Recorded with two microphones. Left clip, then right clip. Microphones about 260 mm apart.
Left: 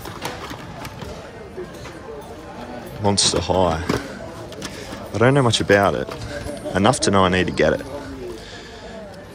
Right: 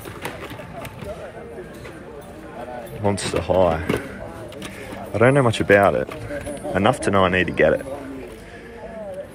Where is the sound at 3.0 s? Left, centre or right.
Centre.